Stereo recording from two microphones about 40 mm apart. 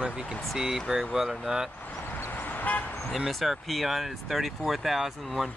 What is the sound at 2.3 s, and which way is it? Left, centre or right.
Vehicle, left.